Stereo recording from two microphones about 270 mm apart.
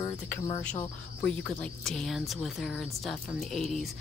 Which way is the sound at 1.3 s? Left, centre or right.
Centre.